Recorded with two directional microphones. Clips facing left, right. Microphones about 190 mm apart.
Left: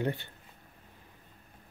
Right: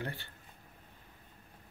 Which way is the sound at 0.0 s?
20° left (ahead or behind).